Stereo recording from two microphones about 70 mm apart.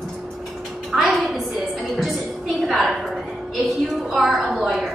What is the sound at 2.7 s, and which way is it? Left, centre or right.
A woman's voice, centre.